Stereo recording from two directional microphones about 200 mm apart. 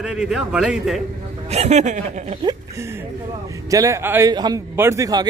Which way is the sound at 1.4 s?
35° right (ahead or behind).